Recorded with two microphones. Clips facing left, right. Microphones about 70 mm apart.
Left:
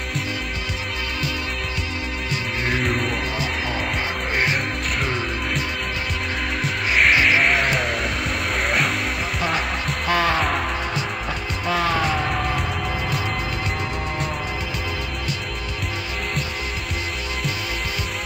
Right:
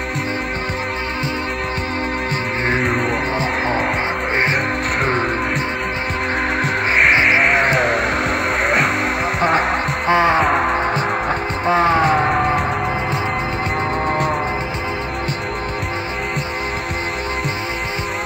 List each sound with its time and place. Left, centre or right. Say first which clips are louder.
2.8 s music: right 5 dB; right
7.1 s music: right 2 dB; right
7.4 s music: right 5 dB; right
10.0 s music: right 6 dB; right
10.4 s music: right 7 dB; right